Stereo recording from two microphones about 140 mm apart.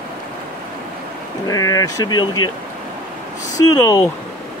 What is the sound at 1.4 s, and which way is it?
Speech, 25° left (ahead or behind).